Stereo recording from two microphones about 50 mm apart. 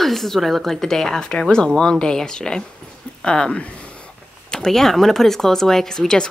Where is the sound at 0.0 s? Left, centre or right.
Centre.